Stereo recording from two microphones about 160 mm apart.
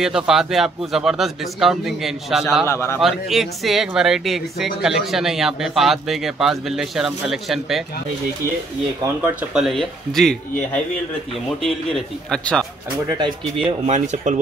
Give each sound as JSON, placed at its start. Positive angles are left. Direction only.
{"t": 0.0, "sound": "a man's voice", "side_deg": -5}
{"t": 2.6, "sound": "a man's voice", "side_deg": 15}
{"t": 3.0, "sound": "a man's voice", "side_deg": 0}
{"t": 9.2, "sound": "a man's voice", "side_deg": -10}
{"t": 11.4, "sound": "a man's voice", "side_deg": 5}
{"t": 13.7, "sound": "speech", "side_deg": -45}